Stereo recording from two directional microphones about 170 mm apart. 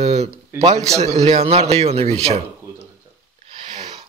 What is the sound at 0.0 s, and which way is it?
Speech, 40° right (ahead or behind).